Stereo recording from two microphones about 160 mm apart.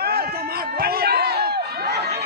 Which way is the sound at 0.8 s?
75° right (ahead or behind).